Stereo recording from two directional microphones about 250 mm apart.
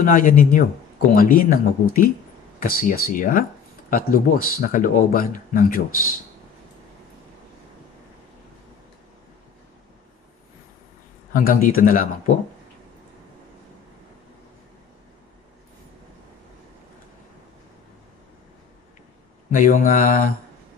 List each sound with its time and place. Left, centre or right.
0.0 s speech: left
11.3 s speech: left
19.5 s speech: left